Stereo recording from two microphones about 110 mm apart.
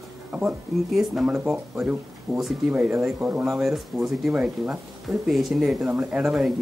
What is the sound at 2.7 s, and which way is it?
Speech, 15° right (ahead or behind).